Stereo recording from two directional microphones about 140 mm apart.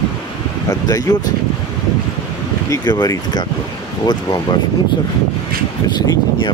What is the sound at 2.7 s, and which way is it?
Speech, 30° left (ahead or behind).